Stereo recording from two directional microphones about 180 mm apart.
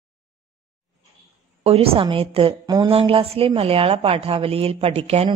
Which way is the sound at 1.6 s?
35° right (ahead or behind).